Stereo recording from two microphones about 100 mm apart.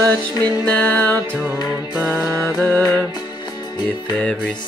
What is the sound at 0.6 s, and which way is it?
Music, 15° left (ahead or behind).